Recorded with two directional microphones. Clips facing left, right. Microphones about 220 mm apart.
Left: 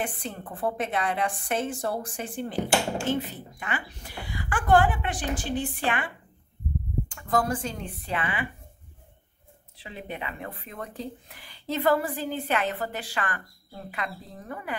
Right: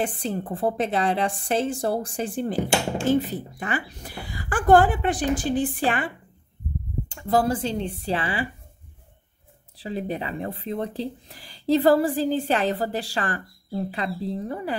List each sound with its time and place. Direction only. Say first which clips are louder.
0.0 s speech: right 6 dB; 30° right (ahead or behind)
7.2 s speech: right 5 dB; 30° right (ahead or behind)
9.8 s speech: right 8 dB; 35° right (ahead or behind)